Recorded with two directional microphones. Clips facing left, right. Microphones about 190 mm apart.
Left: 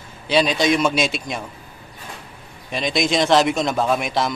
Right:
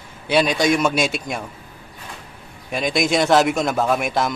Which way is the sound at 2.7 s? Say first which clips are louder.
Right 1 dB; 5° right (ahead or behind).